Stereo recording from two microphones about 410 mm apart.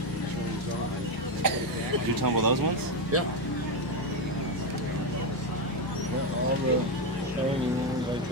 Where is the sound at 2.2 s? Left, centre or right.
Right.